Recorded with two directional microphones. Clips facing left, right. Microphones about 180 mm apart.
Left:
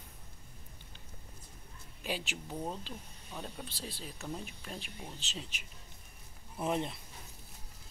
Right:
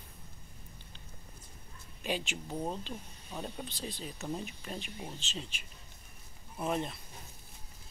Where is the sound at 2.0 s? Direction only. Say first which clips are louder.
Right 3 dB; 5° left (ahead or behind).